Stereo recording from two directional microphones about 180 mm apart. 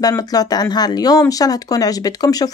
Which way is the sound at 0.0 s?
20° left (ahead or behind).